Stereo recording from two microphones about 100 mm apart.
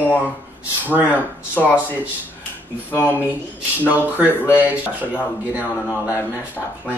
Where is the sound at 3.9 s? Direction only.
15° right (ahead or behind).